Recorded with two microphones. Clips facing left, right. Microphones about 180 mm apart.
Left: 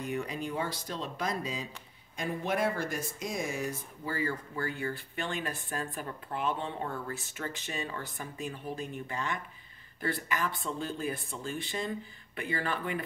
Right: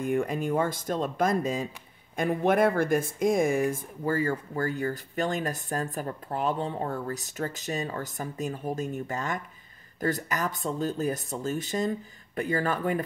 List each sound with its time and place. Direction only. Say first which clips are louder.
0.0 s speech: right 7 dB; 50° right (ahead or behind)